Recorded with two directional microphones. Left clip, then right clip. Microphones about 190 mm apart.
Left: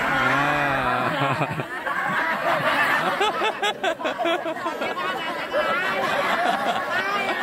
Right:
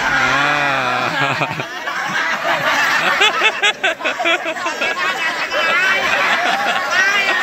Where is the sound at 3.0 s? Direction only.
5° left (ahead or behind).